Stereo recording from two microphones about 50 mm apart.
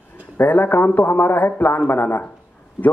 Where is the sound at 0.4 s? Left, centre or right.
Left.